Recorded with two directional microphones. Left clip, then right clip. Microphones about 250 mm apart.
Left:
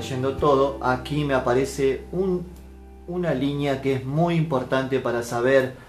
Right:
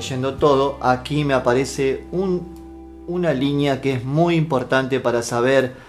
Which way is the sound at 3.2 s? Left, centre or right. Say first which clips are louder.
Right 5 dB; right.